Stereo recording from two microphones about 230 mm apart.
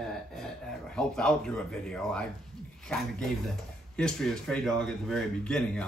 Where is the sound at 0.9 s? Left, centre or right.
Centre.